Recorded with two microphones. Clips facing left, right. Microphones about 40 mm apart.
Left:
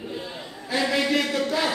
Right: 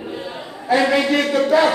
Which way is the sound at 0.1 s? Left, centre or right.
Centre.